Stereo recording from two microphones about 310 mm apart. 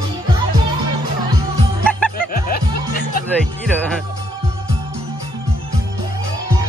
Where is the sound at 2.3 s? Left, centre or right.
Left.